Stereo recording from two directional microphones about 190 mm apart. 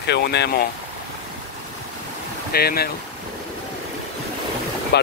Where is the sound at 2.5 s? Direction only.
55° left (ahead or behind).